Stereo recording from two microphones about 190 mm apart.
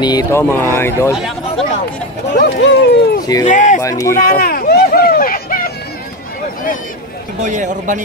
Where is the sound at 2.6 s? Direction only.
65° left (ahead or behind).